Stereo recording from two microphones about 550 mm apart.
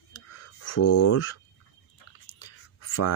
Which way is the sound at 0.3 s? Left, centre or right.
Left.